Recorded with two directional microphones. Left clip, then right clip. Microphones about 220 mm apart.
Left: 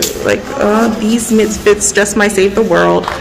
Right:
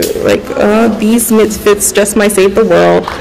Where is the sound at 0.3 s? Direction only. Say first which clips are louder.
Right 2 dB; 20° right (ahead or behind).